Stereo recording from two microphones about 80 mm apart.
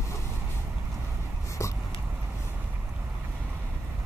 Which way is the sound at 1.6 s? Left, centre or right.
Left.